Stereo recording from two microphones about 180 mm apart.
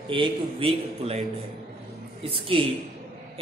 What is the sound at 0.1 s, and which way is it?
A man's voice, 30° right (ahead or behind).